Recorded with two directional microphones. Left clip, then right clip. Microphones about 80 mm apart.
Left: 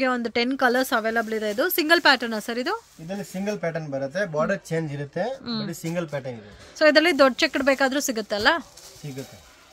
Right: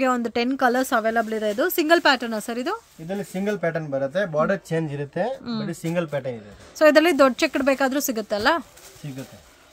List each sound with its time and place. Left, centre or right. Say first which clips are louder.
0.0 s speech: right 2 dB; right
0.4 s speech: left 1 dB; centre
3.2 s speech: right 3 dB; centre
4.0 s speech: right 2 dB; centre
4.6 s speech: right 2 dB; centre
5.4 s speech: right 1 dB; centre
6.8 s speech: right 1 dB; right